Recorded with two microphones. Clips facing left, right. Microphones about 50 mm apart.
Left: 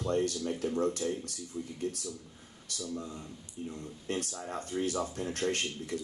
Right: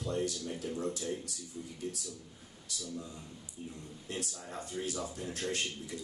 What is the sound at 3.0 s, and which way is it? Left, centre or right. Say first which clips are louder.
Speech: left 3 dB; left.